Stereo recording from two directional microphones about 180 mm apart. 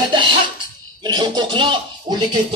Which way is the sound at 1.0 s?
25° right (ahead or behind).